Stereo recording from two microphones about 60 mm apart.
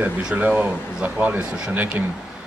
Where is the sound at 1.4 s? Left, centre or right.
Centre.